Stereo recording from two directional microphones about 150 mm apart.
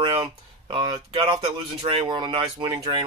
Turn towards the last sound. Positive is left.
turn(degrees=-35)  # may be behind; listen again after turning